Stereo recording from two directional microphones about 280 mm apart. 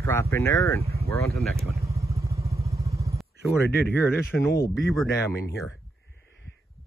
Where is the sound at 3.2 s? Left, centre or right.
Centre.